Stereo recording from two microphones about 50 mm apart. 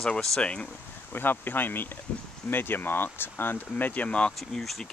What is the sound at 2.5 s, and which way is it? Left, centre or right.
Speech, left.